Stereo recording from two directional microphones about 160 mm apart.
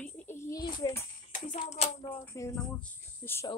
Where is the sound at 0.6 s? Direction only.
25° left (ahead or behind).